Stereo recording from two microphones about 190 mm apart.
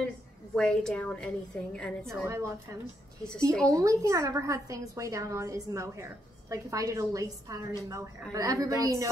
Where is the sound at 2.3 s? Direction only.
15° right (ahead or behind).